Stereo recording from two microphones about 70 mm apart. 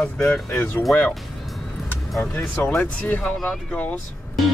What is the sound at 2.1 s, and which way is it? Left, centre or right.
Speech, left.